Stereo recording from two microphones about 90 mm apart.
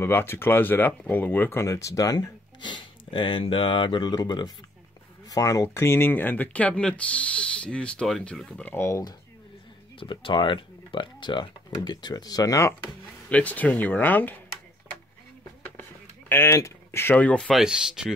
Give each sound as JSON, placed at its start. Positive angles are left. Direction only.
{"t": 0.0, "sound": "speech", "side_deg": 25}
{"t": 5.3, "sound": "speech", "side_deg": 40}
{"t": 8.7, "sound": "speech", "side_deg": 30}
{"t": 9.9, "sound": "speech", "side_deg": 70}
{"t": 13.3, "sound": "speech", "side_deg": 15}
{"t": 15.8, "sound": "a sound", "side_deg": 25}
{"t": 17.2, "sound": "speech", "side_deg": 10}
{"t": 17.6, "sound": "speech", "side_deg": -5}